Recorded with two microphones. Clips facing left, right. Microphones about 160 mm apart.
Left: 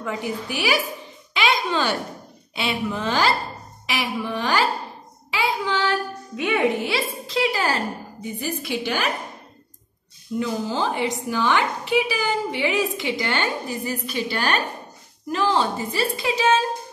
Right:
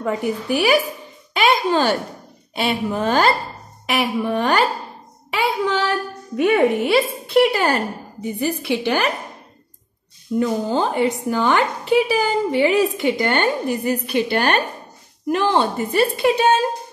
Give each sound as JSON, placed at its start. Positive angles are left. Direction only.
{"t": 0.0, "sound": "a woman's voice", "side_deg": -50}
{"t": 1.3, "sound": "a sound", "side_deg": -50}
{"t": 2.5, "sound": "a woman's voice", "side_deg": -50}
{"t": 5.3, "sound": "child singing", "side_deg": -65}
{"t": 6.3, "sound": "speech", "side_deg": -45}
{"t": 6.7, "sound": "a woman's voice", "side_deg": -65}
{"t": 10.4, "sound": "a woman's voice", "side_deg": -50}